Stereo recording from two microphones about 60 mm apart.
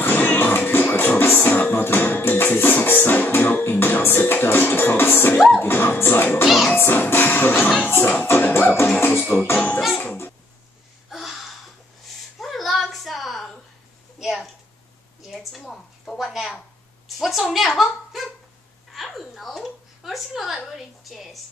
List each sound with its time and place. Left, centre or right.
0.0 s music: left
6.4 s music: centre
6.7 s music: left
9.3 s music: left
9.8 s music: centre
11.1 s a sound: centre